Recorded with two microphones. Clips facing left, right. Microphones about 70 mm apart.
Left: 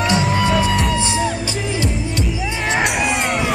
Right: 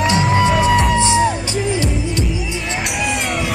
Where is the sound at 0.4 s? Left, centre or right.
Centre.